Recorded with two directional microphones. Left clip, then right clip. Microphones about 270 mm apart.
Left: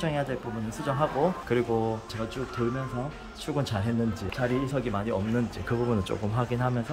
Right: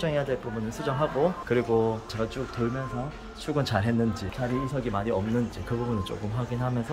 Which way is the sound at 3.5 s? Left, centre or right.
Centre.